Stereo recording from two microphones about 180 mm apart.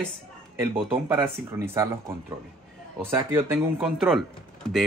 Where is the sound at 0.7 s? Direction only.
30° right (ahead or behind).